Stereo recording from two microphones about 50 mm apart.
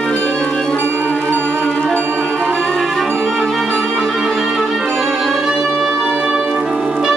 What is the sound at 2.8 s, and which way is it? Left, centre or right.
Music, centre.